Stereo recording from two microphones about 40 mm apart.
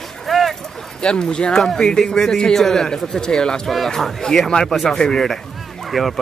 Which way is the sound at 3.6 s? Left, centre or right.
Centre.